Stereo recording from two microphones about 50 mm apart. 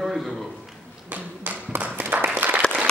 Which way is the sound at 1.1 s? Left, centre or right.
Right.